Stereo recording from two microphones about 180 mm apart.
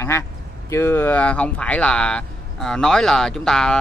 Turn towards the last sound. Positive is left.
turn(degrees=5)  # may be behind; listen again after turning